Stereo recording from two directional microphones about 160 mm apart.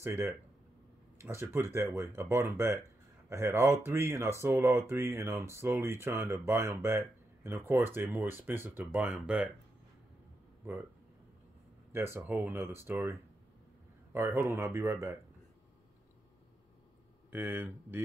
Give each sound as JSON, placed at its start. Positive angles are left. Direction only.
{"t": 0.0, "sound": "speech", "side_deg": -15}
{"t": 10.6, "sound": "speech", "side_deg": -15}
{"t": 11.9, "sound": "speech", "side_deg": -15}
{"t": 17.3, "sound": "speech", "side_deg": -10}